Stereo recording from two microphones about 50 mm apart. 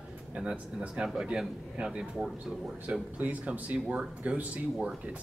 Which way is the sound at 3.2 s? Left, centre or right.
Right.